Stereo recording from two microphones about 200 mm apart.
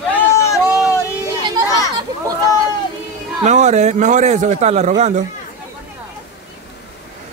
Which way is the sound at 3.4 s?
35° right (ahead or behind).